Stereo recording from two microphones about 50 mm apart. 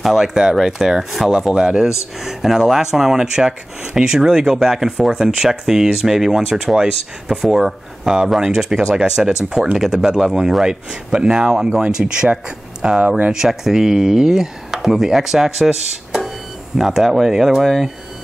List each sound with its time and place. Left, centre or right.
0.2 s speech: centre